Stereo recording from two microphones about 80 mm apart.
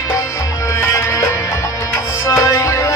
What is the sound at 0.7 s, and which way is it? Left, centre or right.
Music, left.